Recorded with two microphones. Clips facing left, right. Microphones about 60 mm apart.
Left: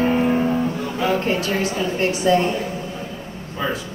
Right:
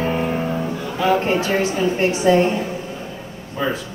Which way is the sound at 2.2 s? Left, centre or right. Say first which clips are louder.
Right 3 dB; right.